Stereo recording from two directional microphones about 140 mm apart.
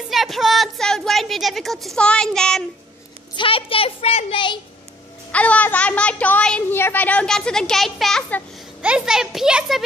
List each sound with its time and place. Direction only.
0.1 s a woman's voice: centre (ahead or behind)
3.3 s a child's voice: 40° left (ahead or behind)
5.3 s a child's voice: 10° left (ahead or behind)